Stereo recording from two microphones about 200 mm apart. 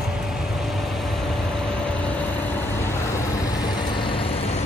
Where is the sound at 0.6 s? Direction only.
Centre (ahead or behind).